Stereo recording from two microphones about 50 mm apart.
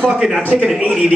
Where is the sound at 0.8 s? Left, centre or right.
Centre.